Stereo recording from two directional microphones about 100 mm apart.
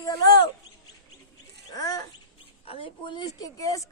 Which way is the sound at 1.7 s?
40° left (ahead or behind).